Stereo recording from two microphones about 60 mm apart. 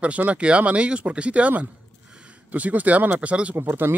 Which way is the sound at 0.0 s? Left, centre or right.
Right.